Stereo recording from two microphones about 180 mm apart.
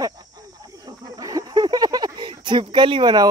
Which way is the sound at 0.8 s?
20° right (ahead or behind).